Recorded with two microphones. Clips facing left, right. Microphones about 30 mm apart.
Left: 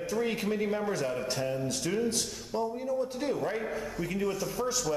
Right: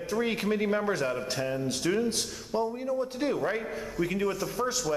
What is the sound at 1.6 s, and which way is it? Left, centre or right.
A man's voice, right.